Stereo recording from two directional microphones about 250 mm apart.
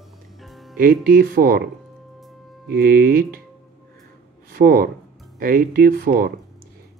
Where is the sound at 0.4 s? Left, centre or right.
Centre.